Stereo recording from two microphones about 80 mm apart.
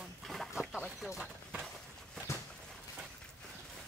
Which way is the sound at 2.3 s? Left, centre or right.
Left.